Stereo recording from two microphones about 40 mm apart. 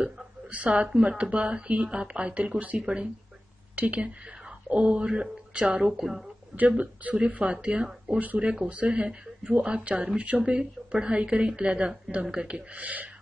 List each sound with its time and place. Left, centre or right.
0.5 s speech: right
5.9 s a woman's voice: centre
6.8 s a woman's voice: right